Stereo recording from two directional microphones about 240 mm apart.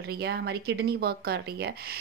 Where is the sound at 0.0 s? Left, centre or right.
Right.